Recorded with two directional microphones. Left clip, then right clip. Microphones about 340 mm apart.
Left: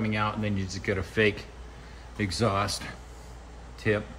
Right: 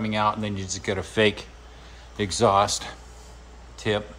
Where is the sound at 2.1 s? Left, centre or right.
Right.